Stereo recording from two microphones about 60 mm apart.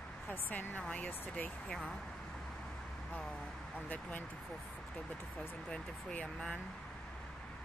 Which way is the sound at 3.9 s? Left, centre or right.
Left.